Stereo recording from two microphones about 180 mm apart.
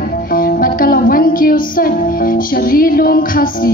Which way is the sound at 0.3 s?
55° left (ahead or behind).